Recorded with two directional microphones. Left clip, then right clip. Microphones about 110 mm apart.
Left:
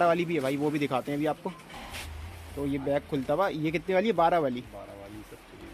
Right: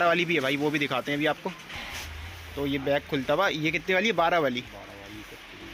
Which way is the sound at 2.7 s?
10° left (ahead or behind).